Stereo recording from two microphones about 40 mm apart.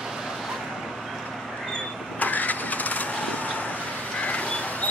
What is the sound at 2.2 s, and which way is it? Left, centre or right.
Vehicle, left.